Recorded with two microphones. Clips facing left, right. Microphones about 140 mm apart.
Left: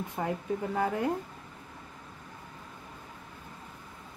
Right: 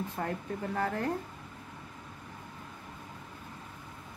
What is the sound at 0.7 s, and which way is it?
Speech, 15° left (ahead or behind).